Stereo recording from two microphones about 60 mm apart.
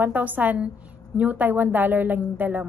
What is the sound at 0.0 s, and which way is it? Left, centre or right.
A woman's voice, right.